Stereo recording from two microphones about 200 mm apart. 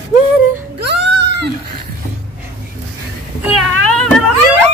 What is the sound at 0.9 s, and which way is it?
Goat, 60° right (ahead or behind).